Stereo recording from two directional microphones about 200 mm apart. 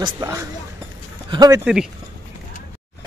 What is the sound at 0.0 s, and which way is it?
Speech, 15° right (ahead or behind).